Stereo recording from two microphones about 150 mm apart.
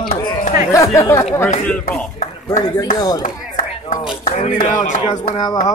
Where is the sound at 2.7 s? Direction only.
25° left (ahead or behind).